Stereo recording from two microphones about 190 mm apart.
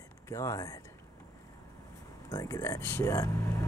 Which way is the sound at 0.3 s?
15° left (ahead or behind).